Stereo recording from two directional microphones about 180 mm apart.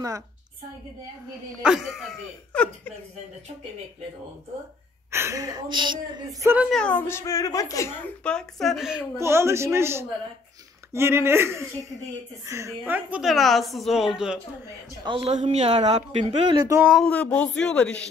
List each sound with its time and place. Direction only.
1.6 s a woman's voice: centre (ahead or behind)
5.1 s a woman's voice: 15° right (ahead or behind)
6.7 s a woman's voice: 5° left (ahead or behind)
9.1 s a woman's voice: 15° right (ahead or behind)
15.0 s a man's voice: 30° right (ahead or behind)
16.4 s a woman's voice: 20° right (ahead or behind)
16.8 s a woman's voice: centre (ahead or behind)